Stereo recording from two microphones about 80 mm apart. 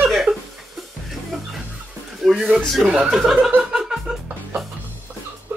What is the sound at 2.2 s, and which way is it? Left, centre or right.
Speech, centre.